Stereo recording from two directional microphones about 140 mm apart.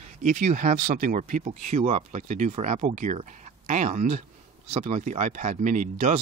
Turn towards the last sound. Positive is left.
turn(degrees=-65)  # may be behind; listen again after turning